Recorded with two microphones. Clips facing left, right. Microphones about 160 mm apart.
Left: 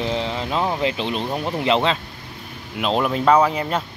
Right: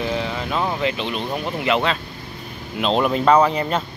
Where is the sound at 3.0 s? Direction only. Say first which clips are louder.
Right 1 dB; centre (ahead or behind).